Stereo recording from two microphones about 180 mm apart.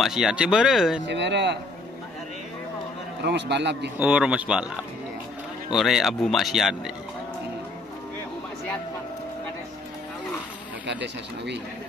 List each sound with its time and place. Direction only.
0.0 s speech: centre (ahead or behind)
1.0 s a man's voice: 75° right (ahead or behind)
3.3 s a man's voice: 70° right (ahead or behind)
4.0 s speech: 5° right (ahead or behind)
5.7 s speech: centre (ahead or behind)